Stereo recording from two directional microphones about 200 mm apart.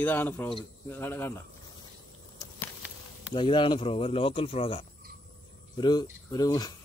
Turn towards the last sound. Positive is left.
turn(degrees=20)  # may be behind; listen again after turning